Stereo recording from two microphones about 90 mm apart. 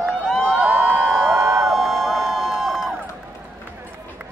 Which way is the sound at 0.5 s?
20° right (ahead or behind).